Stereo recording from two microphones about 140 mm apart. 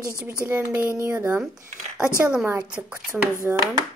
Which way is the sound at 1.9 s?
5° right (ahead or behind).